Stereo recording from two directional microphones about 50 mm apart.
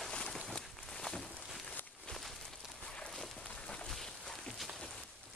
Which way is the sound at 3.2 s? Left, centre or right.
Centre.